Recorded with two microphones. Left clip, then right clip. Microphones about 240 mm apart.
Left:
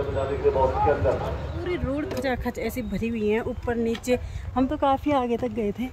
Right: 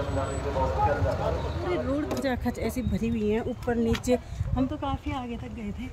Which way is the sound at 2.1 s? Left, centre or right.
Centre.